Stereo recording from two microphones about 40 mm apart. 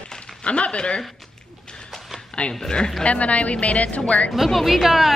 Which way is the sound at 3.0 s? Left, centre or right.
Left.